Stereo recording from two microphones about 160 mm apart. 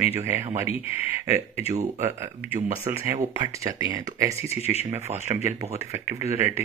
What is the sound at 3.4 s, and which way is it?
Speech, 25° right (ahead or behind).